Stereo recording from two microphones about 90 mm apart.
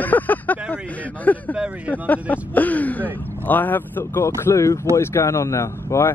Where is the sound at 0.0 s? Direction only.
20° left (ahead or behind).